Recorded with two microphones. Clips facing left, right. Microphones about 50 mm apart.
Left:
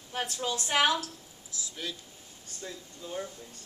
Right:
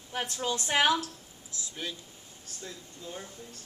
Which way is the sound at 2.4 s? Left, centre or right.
Centre.